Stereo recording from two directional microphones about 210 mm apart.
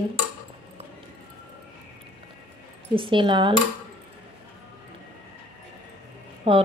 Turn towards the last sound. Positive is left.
turn(degrees=-25)  # may be behind; listen again after turning